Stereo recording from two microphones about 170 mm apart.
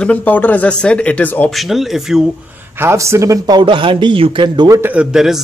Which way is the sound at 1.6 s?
Centre (ahead or behind).